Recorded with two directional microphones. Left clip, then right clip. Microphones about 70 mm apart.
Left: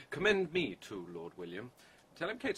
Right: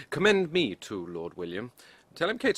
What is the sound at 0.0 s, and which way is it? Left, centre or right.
Speech, right.